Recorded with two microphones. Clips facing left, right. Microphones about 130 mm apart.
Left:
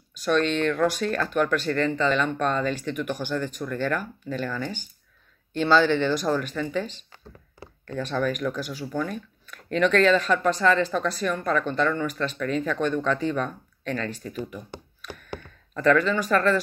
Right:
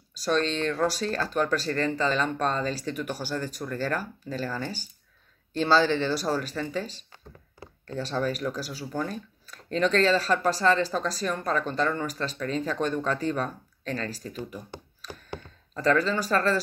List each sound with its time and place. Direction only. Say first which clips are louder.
0.1 s speech: left 3 dB; 35° right (ahead or behind)
8.0 s speech: left 2 dB; 30° right (ahead or behind)
15.7 s speech: left 3 dB; 30° right (ahead or behind)